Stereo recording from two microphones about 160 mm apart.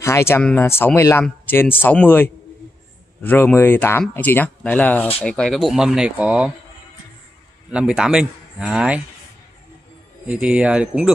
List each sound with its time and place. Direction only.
0.0 s speech: 15° left (ahead or behind); by 6.5 s 5° right (ahead or behind)
7.7 s speech: 5° right (ahead or behind)
10.2 s speech: 5° right (ahead or behind)